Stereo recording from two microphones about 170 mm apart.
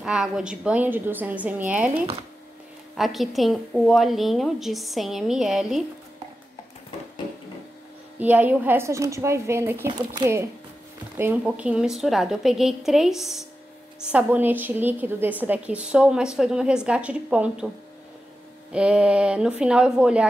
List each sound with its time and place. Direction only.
0.0 s a woman's voice: 5° right (ahead or behind)
8.2 s a woman's voice: 10° right (ahead or behind)
18.7 s a woman's voice: 5° right (ahead or behind)